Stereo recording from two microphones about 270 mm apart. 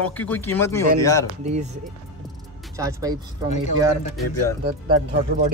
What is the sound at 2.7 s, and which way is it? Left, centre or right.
Speech, centre.